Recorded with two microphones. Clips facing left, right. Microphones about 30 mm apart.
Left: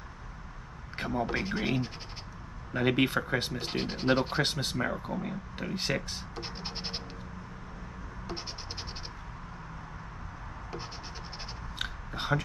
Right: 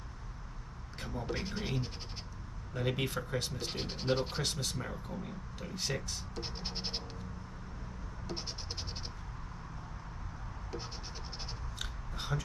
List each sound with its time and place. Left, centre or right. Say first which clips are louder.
0.9 s speech: left 9 dB; left
1.2 s speech: left 5 dB; centre
2.7 s speech: left 8 dB; left; by 4.4 s centre
4.4 s speech: left 7 dB; left
6.3 s scratch: left 1 dB; centre
8.3 s scratch: left 2 dB; centre
11.8 s chewing: left 8 dB; left